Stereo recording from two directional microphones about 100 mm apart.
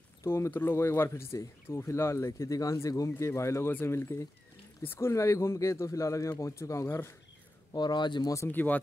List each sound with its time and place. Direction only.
0.2 s speech: 25° left (ahead or behind)
7.7 s speech: 45° left (ahead or behind)
8.5 s speech: 20° left (ahead or behind)